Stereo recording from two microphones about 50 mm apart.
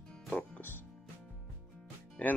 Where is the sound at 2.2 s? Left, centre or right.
Left.